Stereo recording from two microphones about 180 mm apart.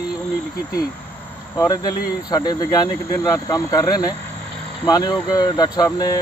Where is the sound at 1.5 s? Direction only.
20° left (ahead or behind).